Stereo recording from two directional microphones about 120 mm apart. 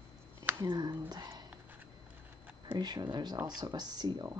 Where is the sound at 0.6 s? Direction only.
35° right (ahead or behind).